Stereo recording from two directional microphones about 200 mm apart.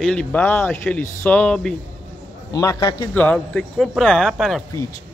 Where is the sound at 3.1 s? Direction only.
5° left (ahead or behind).